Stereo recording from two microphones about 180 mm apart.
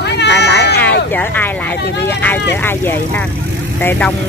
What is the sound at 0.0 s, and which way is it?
Cat, 70° left (ahead or behind).